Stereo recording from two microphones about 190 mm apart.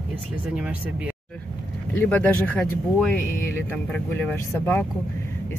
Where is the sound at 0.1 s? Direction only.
5° right (ahead or behind).